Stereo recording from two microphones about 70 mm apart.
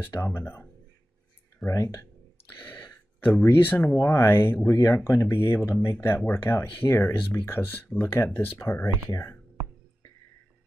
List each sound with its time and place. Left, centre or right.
0.0 s speech: left
1.7 s speech: left
3.2 s speech: left